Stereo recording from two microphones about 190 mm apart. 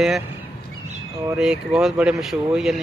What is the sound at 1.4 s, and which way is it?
Speech, 5° right (ahead or behind).